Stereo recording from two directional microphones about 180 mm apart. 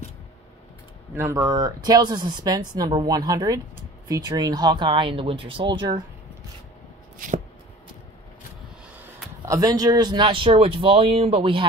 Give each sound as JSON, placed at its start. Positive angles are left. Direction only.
{"t": 1.1, "sound": "speech", "side_deg": -15}
{"t": 7.2, "sound": "shuffling cards", "side_deg": -50}
{"t": 9.5, "sound": "speech", "side_deg": -20}